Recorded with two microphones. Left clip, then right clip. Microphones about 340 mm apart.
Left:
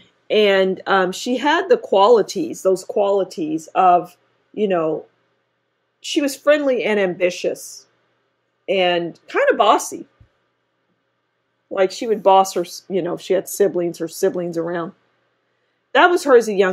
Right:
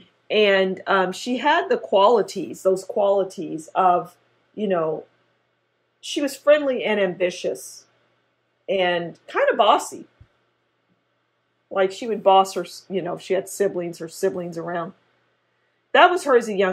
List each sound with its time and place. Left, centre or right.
0.3 s speech: left
5.9 s speech: left
12.0 s speech: left
16.2 s speech: left